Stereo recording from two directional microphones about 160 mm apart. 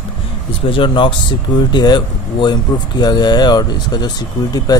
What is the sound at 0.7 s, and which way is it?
Speech, 30° left (ahead or behind).